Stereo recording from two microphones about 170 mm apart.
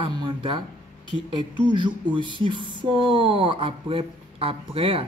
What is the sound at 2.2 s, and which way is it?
Speech, 30° right (ahead or behind).